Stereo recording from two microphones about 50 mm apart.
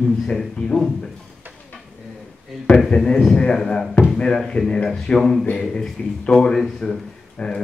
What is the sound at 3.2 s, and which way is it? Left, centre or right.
Speech, centre.